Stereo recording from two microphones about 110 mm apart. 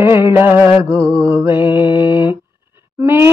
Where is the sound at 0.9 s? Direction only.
10° left (ahead or behind).